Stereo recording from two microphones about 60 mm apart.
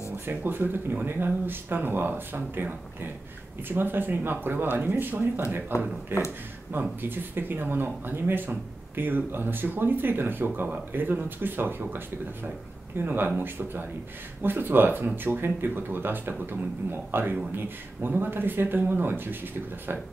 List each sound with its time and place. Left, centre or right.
0.3 s speech: right